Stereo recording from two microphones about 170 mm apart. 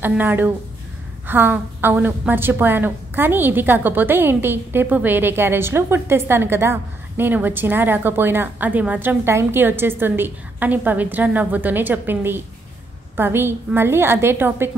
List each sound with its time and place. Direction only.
0.0 s a woman's voice: 10° right (ahead or behind)